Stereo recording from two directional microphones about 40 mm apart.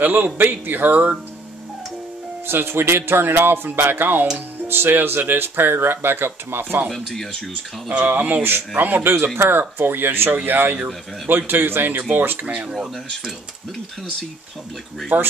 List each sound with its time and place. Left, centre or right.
0.0 s speech: right
2.4 s speech: right
4.6 s speech: right
6.9 s speech: centre
7.9 s speech: right
8.4 s speech: right
10.3 s speech: right
15.1 s speech: right